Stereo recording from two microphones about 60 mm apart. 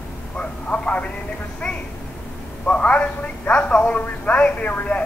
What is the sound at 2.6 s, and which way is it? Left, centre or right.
Speech, left.